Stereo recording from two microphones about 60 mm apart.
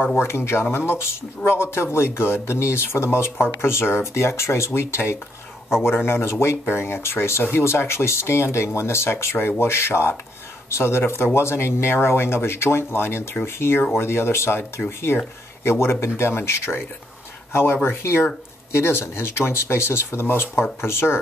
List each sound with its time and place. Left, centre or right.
0.0 s speech: left